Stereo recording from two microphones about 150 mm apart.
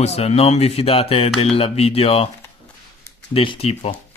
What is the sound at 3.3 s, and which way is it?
Speech, 40° left (ahead or behind).